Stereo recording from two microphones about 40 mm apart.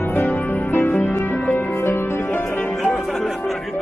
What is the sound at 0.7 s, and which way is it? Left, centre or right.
Music, left.